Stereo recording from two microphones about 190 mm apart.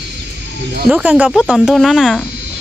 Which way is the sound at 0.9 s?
10° right (ahead or behind).